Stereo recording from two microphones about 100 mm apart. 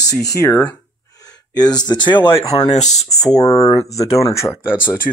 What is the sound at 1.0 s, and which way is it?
Speech, 35° left (ahead or behind).